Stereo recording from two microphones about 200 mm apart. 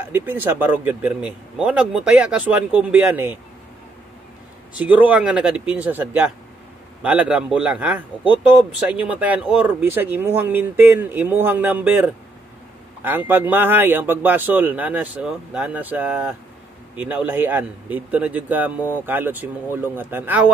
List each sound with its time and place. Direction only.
0.1 s speech: 10° right (ahead or behind)
4.7 s a man's voice: 10° right (ahead or behind)
13.3 s speech: 10° right (ahead or behind)